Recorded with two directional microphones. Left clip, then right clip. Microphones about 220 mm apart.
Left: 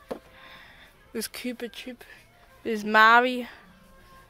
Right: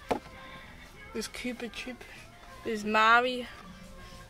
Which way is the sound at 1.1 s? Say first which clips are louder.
Left 3 dB; 50° left (ahead or behind).